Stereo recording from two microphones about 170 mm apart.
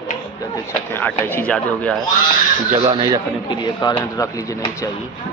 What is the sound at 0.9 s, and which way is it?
Speech, 10° left (ahead or behind).